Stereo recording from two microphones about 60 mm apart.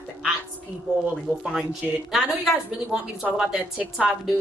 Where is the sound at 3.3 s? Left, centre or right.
Centre.